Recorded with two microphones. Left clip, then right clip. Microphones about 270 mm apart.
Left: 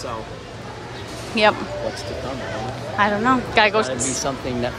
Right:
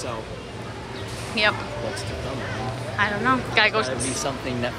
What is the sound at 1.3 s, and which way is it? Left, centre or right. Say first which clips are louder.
Speech: left 5 dB; centre.